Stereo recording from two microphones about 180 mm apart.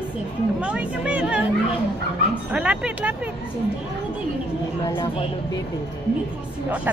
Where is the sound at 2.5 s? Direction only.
5° right (ahead or behind).